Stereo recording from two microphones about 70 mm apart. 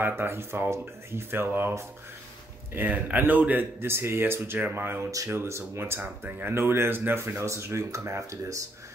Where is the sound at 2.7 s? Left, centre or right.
Right.